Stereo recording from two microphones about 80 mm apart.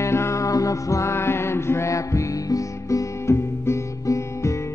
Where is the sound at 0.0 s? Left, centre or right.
Left.